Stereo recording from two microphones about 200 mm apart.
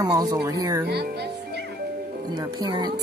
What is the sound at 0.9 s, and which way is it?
Music, 55° right (ahead or behind).